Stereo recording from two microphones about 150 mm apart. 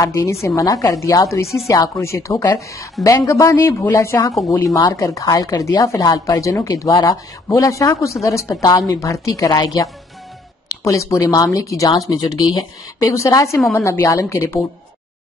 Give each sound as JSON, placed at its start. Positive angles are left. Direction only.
{"t": 0.0, "sound": "a woman's voice", "side_deg": 20}